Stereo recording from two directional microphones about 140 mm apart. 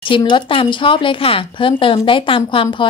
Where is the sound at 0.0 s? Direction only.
35° left (ahead or behind).